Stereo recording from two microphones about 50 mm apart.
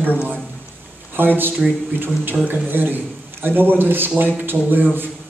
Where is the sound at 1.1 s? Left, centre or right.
Right.